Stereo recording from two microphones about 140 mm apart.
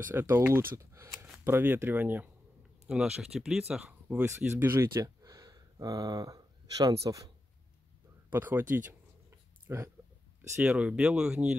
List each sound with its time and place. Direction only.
0.1 s speech: 15° right (ahead or behind)
8.3 s a sound: 15° right (ahead or behind)
10.6 s speech: 5° right (ahead or behind)